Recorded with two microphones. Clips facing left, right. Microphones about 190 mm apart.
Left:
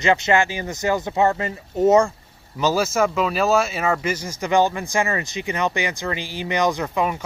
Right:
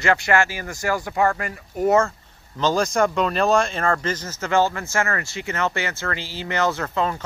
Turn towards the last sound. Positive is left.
turn(degrees=15)  # may be behind; listen again after turning